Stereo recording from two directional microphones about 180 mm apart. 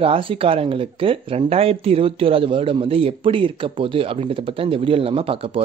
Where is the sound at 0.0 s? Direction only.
30° right (ahead or behind).